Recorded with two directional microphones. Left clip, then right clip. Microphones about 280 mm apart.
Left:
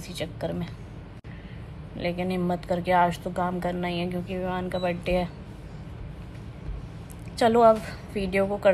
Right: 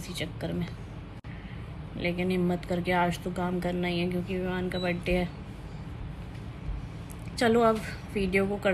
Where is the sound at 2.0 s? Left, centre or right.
Centre.